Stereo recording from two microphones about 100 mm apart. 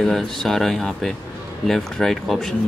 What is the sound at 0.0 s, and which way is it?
Speech, 5° left (ahead or behind).